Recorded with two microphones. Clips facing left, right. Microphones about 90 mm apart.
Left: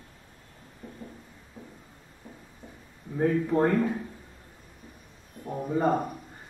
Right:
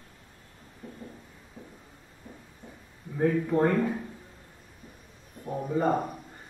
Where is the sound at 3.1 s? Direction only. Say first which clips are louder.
Left 1 dB; 5° left (ahead or behind).